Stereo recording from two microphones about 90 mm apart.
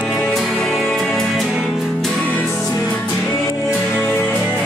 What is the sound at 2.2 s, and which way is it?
Music, 20° left (ahead or behind).